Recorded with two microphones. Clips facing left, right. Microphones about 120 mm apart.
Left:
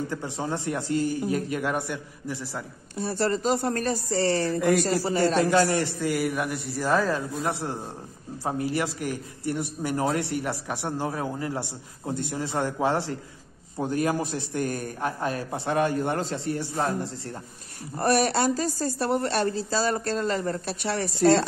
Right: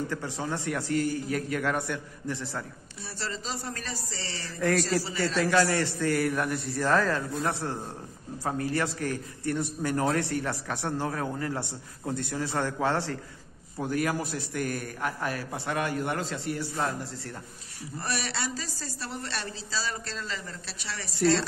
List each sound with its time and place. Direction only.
0.1 s a man's voice: 20° left (ahead or behind)
3.0 s a woman's voice: 50° left (ahead or behind)
4.6 s a man's voice: 15° left (ahead or behind)
17.9 s a woman's voice: 50° left (ahead or behind)